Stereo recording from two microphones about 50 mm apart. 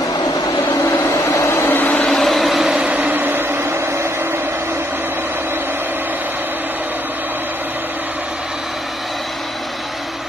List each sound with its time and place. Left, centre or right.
0.8 s vehicle: left
1.4 s vehicle: left
2.0 s vehicle: centre
2.7 s vehicle: right
3.0 s vehicle: right